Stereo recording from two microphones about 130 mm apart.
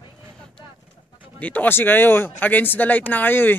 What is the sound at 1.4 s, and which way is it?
Speech, 15° left (ahead or behind).